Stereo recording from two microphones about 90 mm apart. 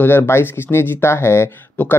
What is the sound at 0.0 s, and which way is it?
Speech, 25° left (ahead or behind).